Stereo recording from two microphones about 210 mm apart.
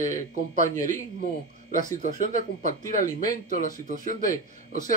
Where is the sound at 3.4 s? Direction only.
40° left (ahead or behind).